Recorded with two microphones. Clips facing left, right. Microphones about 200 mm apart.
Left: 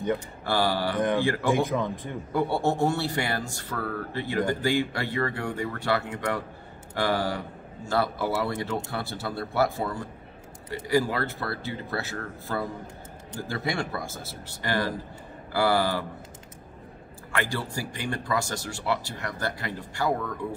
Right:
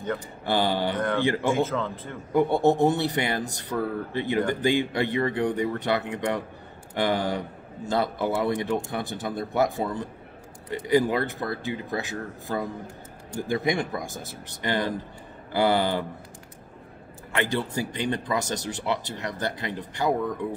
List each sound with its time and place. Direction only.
0.5 s speech: 20° right (ahead or behind)
0.9 s speech: 15° left (ahead or behind)
1.2 s speech: 20° right (ahead or behind)
1.5 s speech: 15° left (ahead or behind)
2.3 s speech: 20° right (ahead or behind)
17.3 s speech: 20° right (ahead or behind)